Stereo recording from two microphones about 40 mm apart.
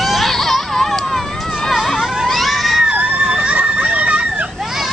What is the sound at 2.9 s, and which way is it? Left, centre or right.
Screaming, right.